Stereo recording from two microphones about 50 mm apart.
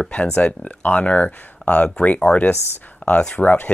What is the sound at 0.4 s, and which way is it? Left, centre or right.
Speech, left.